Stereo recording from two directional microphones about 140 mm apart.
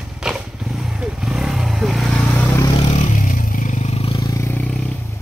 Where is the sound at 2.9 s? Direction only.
65° left (ahead or behind); by 4.1 s 50° left (ahead or behind).